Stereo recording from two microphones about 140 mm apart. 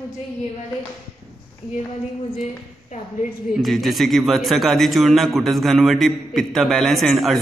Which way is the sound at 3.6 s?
Centre (ahead or behind).